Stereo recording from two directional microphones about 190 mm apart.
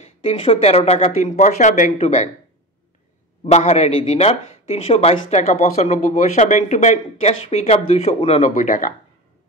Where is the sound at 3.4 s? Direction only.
35° left (ahead or behind).